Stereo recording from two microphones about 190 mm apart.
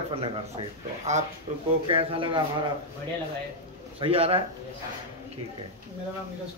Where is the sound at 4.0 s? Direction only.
30° right (ahead or behind).